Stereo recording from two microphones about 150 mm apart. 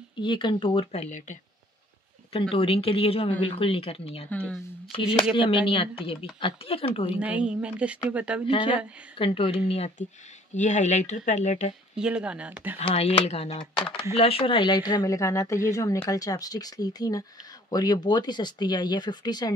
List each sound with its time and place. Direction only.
0.2 s speech: 30° left (ahead or behind); by 1.4 s 55° left (ahead or behind)
2.5 s speech: 40° left (ahead or behind)
4.3 s speech: 10° left (ahead or behind)
5.3 s speech: 35° left (ahead or behind)
7.2 s speech: 10° right (ahead or behind)
8.5 s speech: 35° left (ahead or behind); by 11.7 s 50° left (ahead or behind)
11.9 s speech: 5° right (ahead or behind)
12.7 s speech: 45° left (ahead or behind); by 19.5 s 25° left (ahead or behind)